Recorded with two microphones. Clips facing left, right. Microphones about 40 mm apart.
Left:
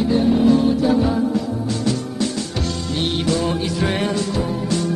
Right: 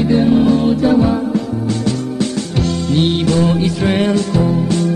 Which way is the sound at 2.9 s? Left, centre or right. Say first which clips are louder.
Right 5 dB; right.